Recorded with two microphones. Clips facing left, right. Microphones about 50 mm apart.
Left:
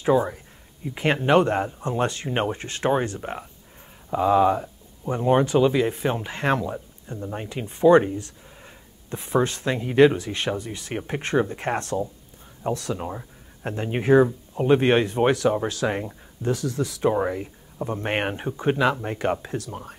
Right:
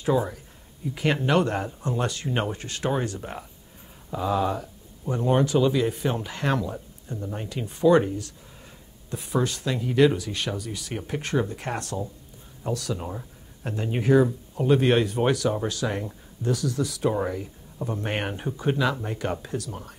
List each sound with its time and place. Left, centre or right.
0.0 s speech: left
9.1 s speech: left
12.9 s speech: centre
13.7 s speech: left